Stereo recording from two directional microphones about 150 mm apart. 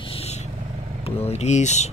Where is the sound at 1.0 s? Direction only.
45° left (ahead or behind).